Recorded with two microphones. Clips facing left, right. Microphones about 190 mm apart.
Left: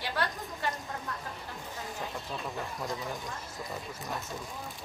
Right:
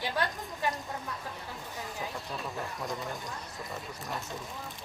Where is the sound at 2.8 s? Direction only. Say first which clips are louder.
Even; centre (ahead or behind).